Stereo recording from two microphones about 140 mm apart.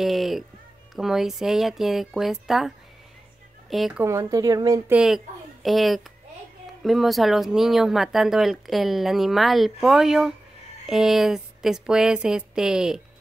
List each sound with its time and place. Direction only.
0.0 s music: centre (ahead or behind)
0.9 s speech: centre (ahead or behind)
3.7 s speech: centre (ahead or behind)
4.0 s speech: 25° right (ahead or behind)
4.9 s a woman's voice: 5° right (ahead or behind)